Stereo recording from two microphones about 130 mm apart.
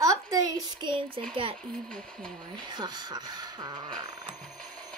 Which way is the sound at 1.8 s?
5° left (ahead or behind).